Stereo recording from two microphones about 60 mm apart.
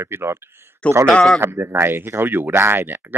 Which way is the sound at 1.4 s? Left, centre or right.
Right.